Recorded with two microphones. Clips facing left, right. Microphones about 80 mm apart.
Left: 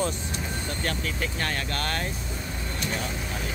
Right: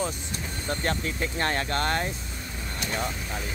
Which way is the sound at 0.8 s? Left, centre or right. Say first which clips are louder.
Right 1 dB; right.